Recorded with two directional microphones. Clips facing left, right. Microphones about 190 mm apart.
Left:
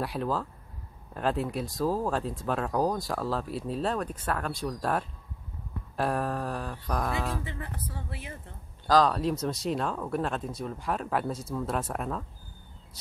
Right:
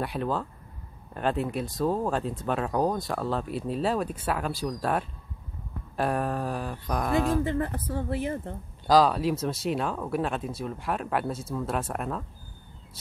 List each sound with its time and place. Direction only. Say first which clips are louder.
0.0 s speech: right 1 dB; centre (ahead or behind)
5.9 s speech: right 2 dB; centre (ahead or behind)
7.4 s speech: right 10 dB; 50° right (ahead or behind)
8.8 s speech: right 2 dB; 10° right (ahead or behind)